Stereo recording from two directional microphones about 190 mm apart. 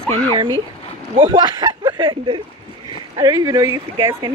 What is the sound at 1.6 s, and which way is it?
Speech, 20° right (ahead or behind).